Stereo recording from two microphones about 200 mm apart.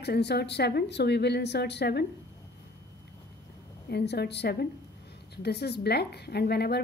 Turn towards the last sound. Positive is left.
turn(degrees=55)  # may be behind; listen again after turning